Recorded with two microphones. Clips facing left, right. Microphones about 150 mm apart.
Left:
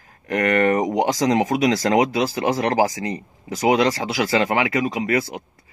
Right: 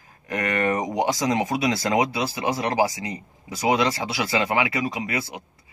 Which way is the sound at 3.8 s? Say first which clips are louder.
Left 4 dB; 45° left (ahead or behind).